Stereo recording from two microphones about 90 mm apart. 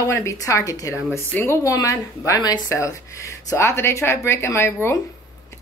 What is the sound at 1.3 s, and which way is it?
Speech, 25° left (ahead or behind).